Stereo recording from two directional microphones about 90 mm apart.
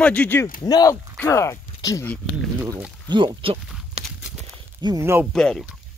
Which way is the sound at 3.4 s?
90° right.